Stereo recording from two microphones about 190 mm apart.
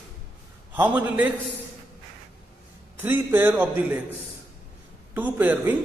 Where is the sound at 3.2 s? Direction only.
10° right (ahead or behind).